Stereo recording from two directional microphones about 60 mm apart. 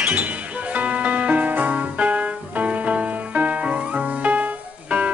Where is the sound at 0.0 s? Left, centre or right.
Right.